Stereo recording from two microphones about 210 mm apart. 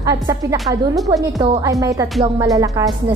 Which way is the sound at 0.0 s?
15° right (ahead or behind).